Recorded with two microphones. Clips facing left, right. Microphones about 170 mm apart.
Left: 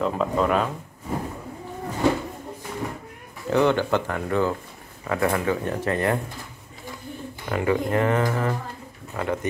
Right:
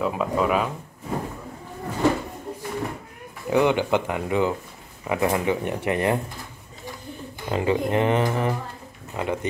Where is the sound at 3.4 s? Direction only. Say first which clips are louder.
Even; 15° right (ahead or behind).